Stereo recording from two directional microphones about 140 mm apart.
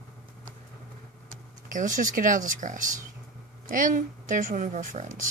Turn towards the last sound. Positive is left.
turn(degrees=-65)  # may be behind; listen again after turning